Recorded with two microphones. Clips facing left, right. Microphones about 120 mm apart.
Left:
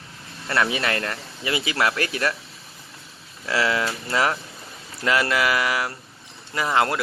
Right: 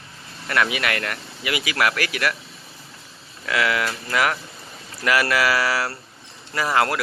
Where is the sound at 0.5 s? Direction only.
30° left (ahead or behind).